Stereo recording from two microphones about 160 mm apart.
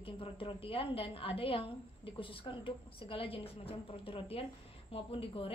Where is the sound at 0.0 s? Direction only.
35° left (ahead or behind).